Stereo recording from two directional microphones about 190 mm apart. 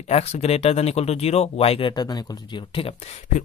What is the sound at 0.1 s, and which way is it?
Speech, 35° left (ahead or behind).